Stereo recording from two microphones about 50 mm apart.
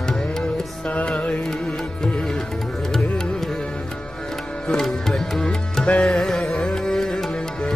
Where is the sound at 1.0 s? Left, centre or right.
Left.